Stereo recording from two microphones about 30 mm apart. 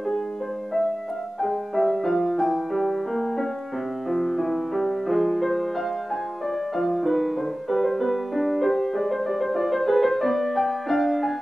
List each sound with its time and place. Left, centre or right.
1.4 s music: centre
6.8 s music: centre